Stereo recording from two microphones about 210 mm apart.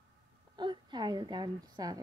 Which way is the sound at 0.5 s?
20° right (ahead or behind).